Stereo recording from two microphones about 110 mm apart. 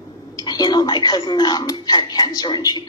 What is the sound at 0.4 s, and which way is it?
A woman's voice, 40° left (ahead or behind).